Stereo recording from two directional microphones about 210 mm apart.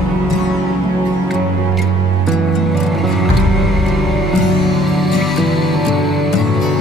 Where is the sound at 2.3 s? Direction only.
Centre (ahead or behind).